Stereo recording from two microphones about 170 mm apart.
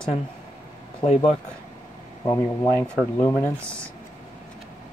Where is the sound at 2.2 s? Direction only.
20° left (ahead or behind).